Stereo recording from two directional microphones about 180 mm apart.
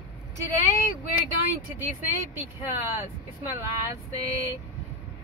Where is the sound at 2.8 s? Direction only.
10° right (ahead or behind).